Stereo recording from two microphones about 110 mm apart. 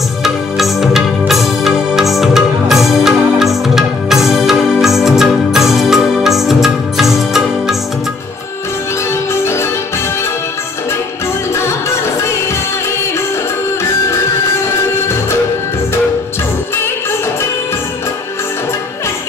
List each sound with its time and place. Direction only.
0.2 s music: centre (ahead or behind)
9.3 s music: 25° left (ahead or behind)